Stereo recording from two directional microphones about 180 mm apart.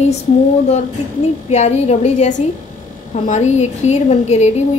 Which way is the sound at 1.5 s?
40° left (ahead or behind).